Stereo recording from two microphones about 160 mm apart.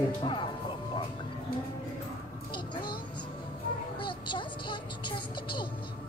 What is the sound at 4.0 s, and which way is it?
Music, 30° left (ahead or behind).